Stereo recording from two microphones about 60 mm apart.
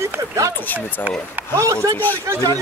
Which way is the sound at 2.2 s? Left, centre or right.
Right.